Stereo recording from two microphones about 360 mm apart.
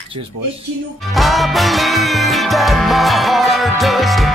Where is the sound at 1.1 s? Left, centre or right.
Centre.